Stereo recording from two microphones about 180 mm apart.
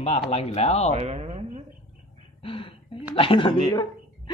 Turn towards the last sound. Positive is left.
turn(degrees=30)  # may be behind; listen again after turning